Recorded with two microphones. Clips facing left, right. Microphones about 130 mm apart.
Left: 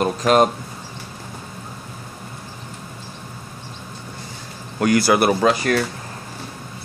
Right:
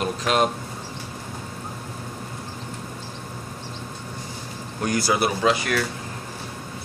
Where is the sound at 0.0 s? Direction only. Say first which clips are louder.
Left 6 dB; 45° left (ahead or behind).